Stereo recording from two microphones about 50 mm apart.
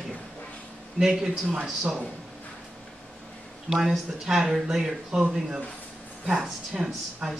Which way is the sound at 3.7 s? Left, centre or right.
Centre.